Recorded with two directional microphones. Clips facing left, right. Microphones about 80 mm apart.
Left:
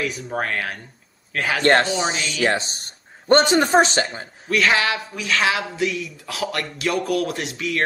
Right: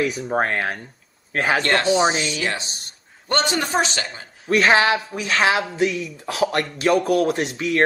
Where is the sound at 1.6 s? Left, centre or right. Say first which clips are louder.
Left 6 dB; left.